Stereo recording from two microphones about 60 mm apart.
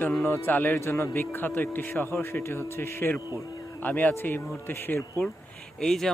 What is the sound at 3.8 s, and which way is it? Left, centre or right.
Speech, left.